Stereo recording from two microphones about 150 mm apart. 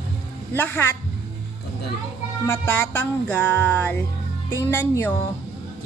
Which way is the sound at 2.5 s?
10° left (ahead or behind).